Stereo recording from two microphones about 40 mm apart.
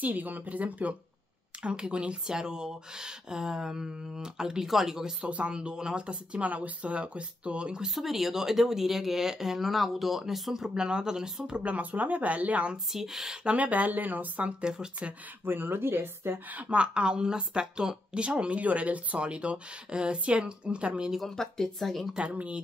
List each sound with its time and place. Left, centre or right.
0.0 s speech: right
1.6 s speech: right
5.2 s speech: right
6.4 s speech: right
7.9 s speech: centre
10.7 s speech: right
11.4 s speech: right
12.7 s speech: centre
13.6 s speech: right
14.4 s speech: right
15.4 s speech: right
16.6 s speech: right
21.4 s speech: centre
22.2 s speech: right